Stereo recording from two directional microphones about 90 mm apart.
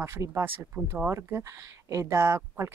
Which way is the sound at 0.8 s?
10° right (ahead or behind).